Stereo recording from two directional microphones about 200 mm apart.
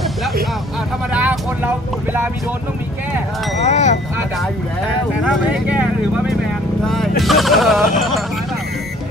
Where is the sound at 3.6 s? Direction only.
35° left (ahead or behind).